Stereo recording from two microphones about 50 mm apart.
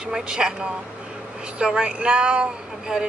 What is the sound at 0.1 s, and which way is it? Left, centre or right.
Speech, centre.